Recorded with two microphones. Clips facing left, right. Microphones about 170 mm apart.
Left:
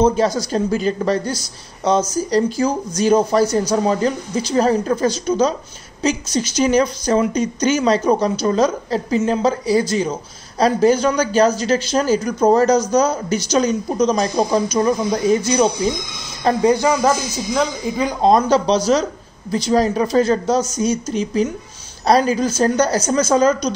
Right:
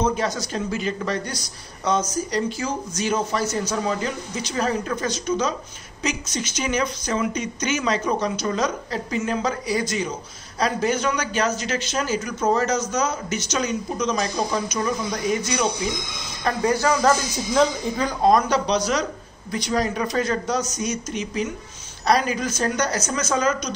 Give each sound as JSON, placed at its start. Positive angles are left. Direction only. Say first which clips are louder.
{"t": 0.0, "sound": "speech", "louder": "left 7 dB", "side_deg": 30}
{"t": 16.4, "sound": "speech", "louder": "left 6 dB", "side_deg": 20}
{"t": 18.2, "sound": "speech", "louder": "left 4 dB", "side_deg": 30}